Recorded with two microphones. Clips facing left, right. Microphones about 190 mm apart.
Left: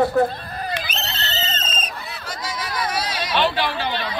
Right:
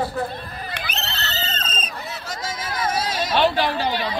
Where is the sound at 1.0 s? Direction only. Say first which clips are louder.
Left 1 dB; 20° left (ahead or behind).